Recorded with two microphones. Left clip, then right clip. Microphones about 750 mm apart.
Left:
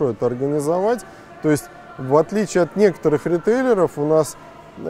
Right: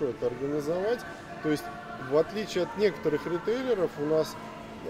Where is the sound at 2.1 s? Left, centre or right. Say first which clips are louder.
Left 10 dB; left.